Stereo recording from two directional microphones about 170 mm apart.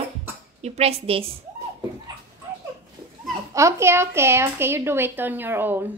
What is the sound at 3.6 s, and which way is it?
A woman's voice, 15° right (ahead or behind).